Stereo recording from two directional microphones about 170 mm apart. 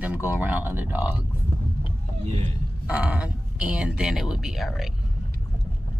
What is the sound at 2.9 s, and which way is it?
Speech, 5° right (ahead or behind).